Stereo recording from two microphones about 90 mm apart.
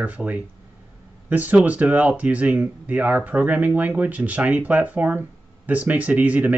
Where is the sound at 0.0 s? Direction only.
15° right (ahead or behind).